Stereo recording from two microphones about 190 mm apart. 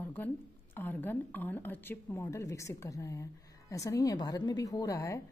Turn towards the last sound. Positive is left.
turn(degrees=15)  # may be behind; listen again after turning